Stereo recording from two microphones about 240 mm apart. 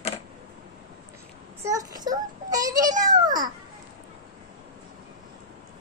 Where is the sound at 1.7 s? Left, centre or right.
Centre.